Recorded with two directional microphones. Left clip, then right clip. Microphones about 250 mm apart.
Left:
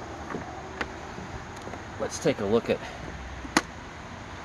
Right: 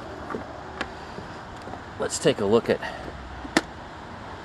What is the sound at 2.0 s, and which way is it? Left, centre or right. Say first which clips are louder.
Speech: right 4 dB; right.